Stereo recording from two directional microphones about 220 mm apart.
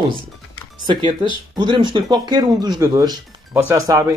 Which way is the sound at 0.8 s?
20° right (ahead or behind).